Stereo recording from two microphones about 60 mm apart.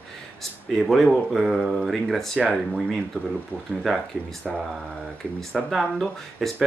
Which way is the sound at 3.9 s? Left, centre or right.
Centre.